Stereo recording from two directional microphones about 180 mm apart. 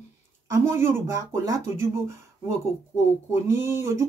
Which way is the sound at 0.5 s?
15° right (ahead or behind).